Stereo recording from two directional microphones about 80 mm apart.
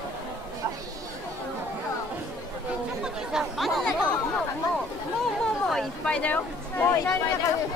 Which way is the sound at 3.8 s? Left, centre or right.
Centre.